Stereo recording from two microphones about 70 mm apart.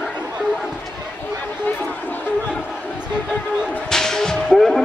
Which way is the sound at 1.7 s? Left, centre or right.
Left.